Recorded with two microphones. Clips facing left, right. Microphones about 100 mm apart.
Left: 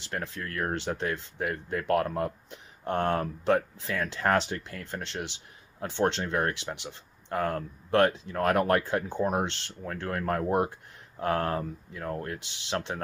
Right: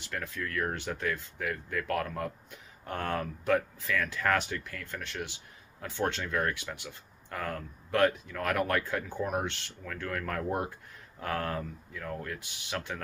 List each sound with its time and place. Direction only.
0.0 s speech: 30° left (ahead or behind)